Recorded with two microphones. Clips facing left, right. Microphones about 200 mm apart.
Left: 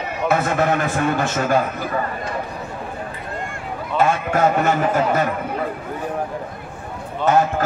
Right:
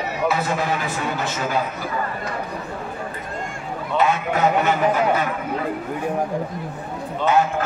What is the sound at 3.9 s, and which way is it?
A man's voice, 45° left (ahead or behind).